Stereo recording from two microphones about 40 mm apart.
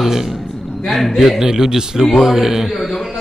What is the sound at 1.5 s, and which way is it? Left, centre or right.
A man's voice, centre.